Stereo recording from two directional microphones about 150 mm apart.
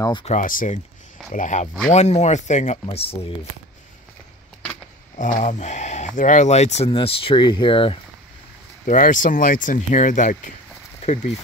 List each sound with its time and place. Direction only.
0.2 s speech: 55° left (ahead or behind)
5.1 s speech: 50° left (ahead or behind); by 8.0 s 35° left (ahead or behind)
8.8 s speech: 60° left (ahead or behind)
11.0 s speech: 45° left (ahead or behind)